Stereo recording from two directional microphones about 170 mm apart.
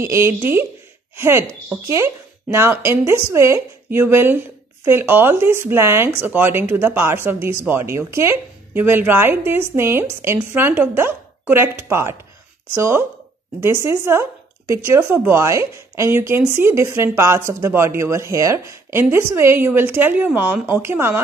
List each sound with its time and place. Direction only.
0.0 s speech: 15° right (ahead or behind)